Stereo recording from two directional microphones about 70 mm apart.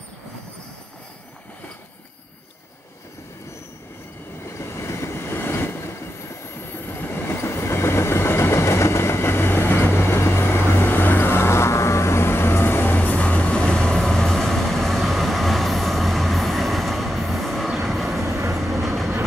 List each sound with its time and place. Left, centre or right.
4.5 s train: left; by 18.2 s centre
18.2 s train: right
18.6 s train: centre